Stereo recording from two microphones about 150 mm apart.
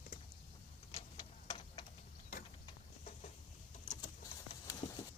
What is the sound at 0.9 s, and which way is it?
Tick-tock, 40° left (ahead or behind).